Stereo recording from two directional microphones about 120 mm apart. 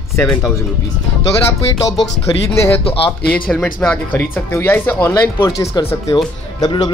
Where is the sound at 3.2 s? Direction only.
10° left (ahead or behind).